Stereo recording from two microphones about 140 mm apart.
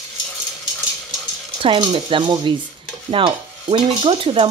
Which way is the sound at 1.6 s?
40° right (ahead or behind).